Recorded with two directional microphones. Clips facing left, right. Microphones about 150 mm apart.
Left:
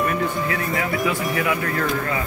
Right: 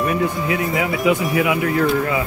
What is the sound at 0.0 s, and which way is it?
Speech, 15° right (ahead or behind).